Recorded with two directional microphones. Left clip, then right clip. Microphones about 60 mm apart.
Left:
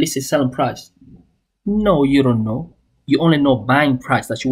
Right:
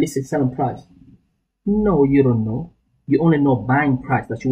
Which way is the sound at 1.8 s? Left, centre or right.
Left.